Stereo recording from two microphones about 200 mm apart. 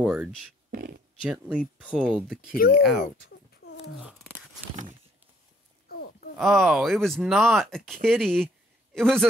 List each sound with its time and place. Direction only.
0.0 s speech: 5° right (ahead or behind)
0.7 s a sound: 45° right (ahead or behind)
1.2 s speech: 5° right (ahead or behind)
2.5 s speech: 45° left (ahead or behind)
2.8 s speech: centre (ahead or behind)
3.6 s a sound: 55° left (ahead or behind)
4.0 s a sound: 5° right (ahead or behind)
5.9 s groan: 50° left (ahead or behind)
6.3 s a man's voice: centre (ahead or behind)